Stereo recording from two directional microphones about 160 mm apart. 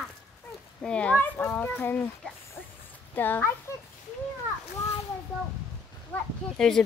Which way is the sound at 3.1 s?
10° left (ahead or behind).